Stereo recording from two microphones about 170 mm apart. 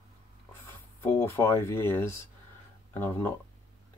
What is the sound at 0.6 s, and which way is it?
Speech, 15° left (ahead or behind).